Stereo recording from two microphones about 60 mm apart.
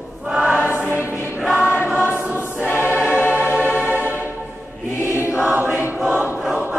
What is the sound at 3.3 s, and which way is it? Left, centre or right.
Music, right.